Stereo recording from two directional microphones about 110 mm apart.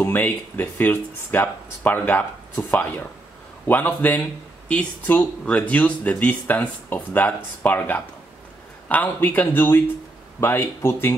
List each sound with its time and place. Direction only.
0.0 s speech: 15° left (ahead or behind)